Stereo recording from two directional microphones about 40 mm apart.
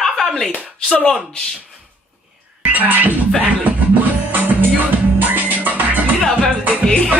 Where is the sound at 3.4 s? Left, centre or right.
Right.